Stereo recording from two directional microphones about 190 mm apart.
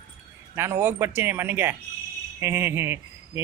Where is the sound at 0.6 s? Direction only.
10° right (ahead or behind).